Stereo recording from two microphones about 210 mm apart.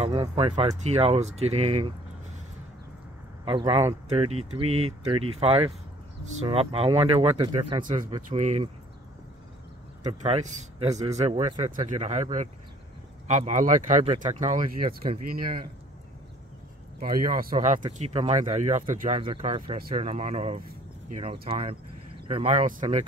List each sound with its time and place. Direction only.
0.0 s speech: 30° right (ahead or behind)
3.4 s speech: 25° right (ahead or behind)
10.0 s speech: 30° right (ahead or behind)
17.0 s speech: 40° right (ahead or behind)